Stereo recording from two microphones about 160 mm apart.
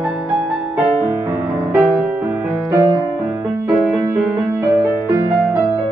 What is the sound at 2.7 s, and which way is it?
Music, 20° right (ahead or behind).